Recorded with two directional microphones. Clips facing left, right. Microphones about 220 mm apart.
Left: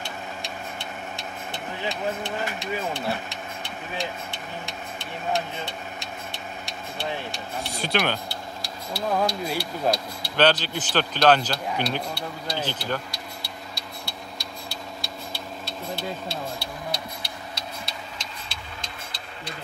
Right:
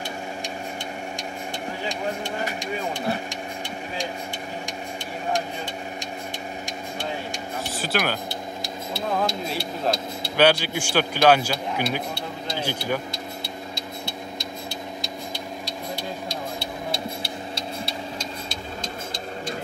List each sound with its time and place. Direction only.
2.2 s speech: 15° right (ahead or behind)
7.7 s speech: 5° right (ahead or behind)
8.9 s speech: 25° right (ahead or behind)
10.3 s speech: 10° right (ahead or behind)
13.1 s vehicle: 20° right (ahead or behind)